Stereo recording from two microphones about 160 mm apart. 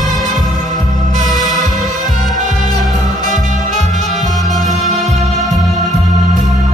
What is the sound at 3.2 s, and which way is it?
Music, 50° right (ahead or behind).